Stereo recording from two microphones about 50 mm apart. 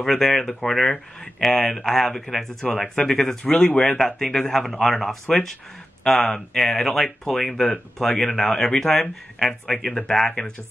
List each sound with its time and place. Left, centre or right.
0.0 s speech: centre
8.1 s speech: left
8.4 s speech: centre